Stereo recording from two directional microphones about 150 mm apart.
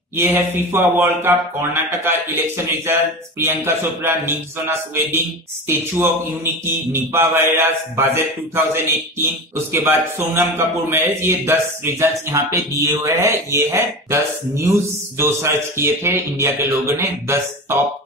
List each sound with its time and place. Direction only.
0.1 s speech: 15° right (ahead or behind)